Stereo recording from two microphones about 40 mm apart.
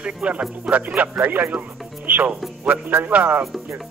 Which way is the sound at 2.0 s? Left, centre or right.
Right.